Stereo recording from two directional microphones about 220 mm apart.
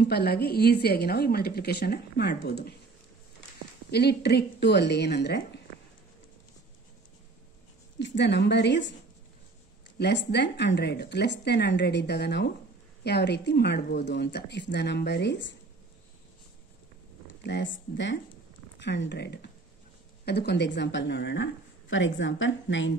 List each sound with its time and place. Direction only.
0.1 s a woman's voice: 45° left (ahead or behind)
3.9 s a woman's voice: 50° left (ahead or behind)
8.0 s a woman's voice: 50° left (ahead or behind)
9.9 s a woman's voice: 50° left (ahead or behind)
17.3 s a woman's voice: 55° left (ahead or behind)